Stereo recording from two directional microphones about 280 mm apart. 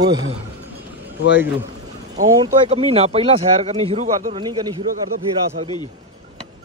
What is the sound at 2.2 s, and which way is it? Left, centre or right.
Speech, centre.